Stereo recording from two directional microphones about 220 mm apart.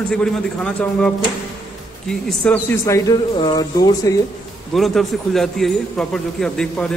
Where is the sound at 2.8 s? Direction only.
15° left (ahead or behind).